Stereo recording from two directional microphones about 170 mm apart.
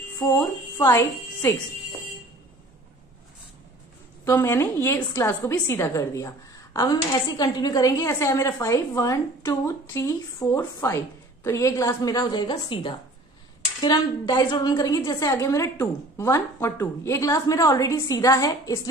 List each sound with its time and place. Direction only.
0.7 s a woman's voice: 15° left (ahead or behind)
4.2 s a woman's voice: 15° left (ahead or behind)